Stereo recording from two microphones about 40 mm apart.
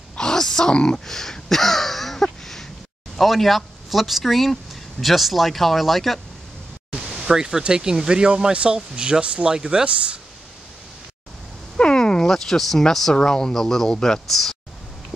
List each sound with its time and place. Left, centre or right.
0.2 s grunt: centre
0.7 s a sound: centre
3.2 s speech: centre
7.1 s speech: centre
11.7 s a sound: left
13.1 s speech: centre